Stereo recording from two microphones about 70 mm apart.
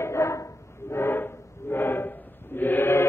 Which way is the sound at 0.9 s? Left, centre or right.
Left.